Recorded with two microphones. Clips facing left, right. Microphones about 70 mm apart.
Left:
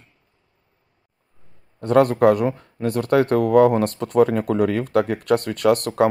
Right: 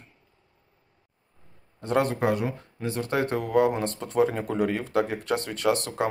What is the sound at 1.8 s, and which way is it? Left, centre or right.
Speech, left.